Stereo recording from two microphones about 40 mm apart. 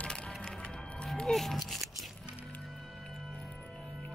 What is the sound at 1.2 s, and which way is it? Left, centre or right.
Music, centre.